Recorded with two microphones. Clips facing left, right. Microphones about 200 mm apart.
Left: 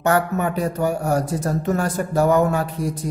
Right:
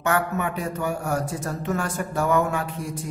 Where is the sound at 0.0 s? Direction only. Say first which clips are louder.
Left 4 dB; 35° left (ahead or behind).